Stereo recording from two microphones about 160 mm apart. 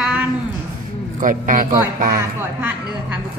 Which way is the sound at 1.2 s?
55° right (ahead or behind).